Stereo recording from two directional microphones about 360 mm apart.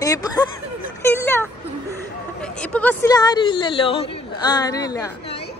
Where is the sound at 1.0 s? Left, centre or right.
Centre.